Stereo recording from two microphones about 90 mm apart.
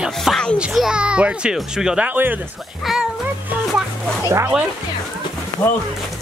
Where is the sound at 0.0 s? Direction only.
Centre (ahead or behind).